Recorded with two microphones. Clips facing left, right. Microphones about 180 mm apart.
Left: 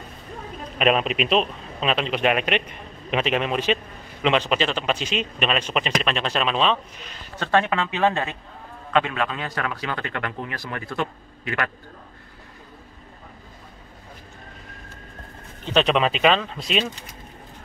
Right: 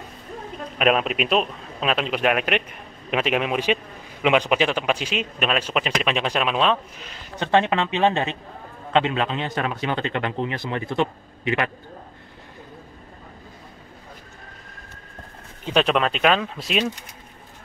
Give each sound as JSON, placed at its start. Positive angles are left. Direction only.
{"t": 0.7, "sound": "a man's voice", "side_deg": 0}
{"t": 7.3, "sound": "speech", "side_deg": -20}
{"t": 15.6, "sound": "a man's voice", "side_deg": -5}